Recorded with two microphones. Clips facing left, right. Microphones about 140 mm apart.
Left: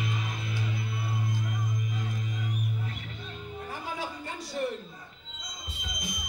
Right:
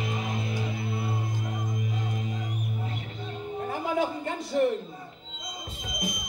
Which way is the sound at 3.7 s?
50° right (ahead or behind).